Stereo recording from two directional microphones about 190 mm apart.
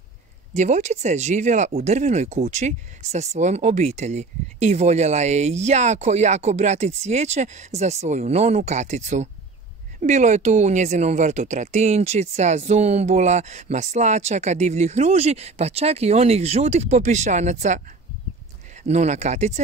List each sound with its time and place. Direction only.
0.6 s speech: 40° right (ahead or behind)
18.9 s speech: 35° right (ahead or behind)